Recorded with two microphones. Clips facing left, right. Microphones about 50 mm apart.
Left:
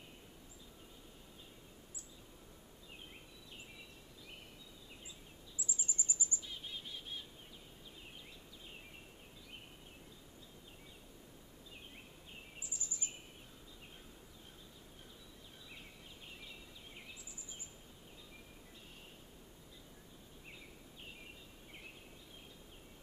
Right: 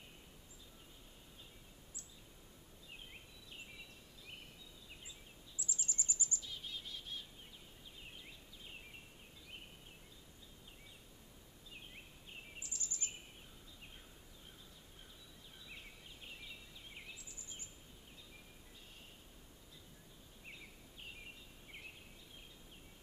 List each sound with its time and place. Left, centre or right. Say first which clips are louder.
5.6 s bird vocalization: left 1 dB; centre
12.6 s bird vocalization: left 1 dB; centre